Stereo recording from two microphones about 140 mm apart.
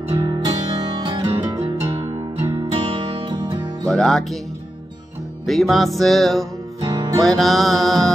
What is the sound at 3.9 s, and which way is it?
Speech, 5° left (ahead or behind).